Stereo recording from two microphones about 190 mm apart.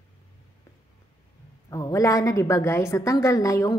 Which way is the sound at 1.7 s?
15° left (ahead or behind).